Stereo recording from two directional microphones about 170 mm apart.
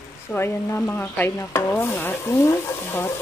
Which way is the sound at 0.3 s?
10° left (ahead or behind).